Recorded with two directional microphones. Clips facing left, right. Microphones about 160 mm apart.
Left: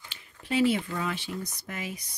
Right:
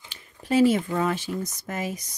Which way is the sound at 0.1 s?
40° right (ahead or behind).